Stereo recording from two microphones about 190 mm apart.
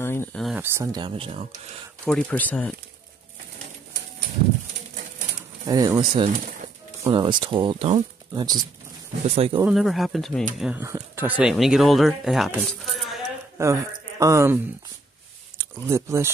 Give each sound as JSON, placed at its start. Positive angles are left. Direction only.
{"t": 0.0, "sound": "a sound", "side_deg": 10}
{"t": 0.4, "sound": "a sound", "side_deg": 0}
{"t": 0.7, "sound": "speech", "side_deg": -20}
{"t": 2.0, "sound": "speech", "side_deg": 5}
{"t": 5.7, "sound": "speech", "side_deg": -20}
{"t": 9.7, "sound": "speech", "side_deg": 0}
{"t": 10.6, "sound": "speech", "side_deg": -10}
{"t": 13.6, "sound": "speech", "side_deg": -15}